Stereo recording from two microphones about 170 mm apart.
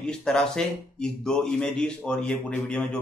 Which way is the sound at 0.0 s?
5° left (ahead or behind).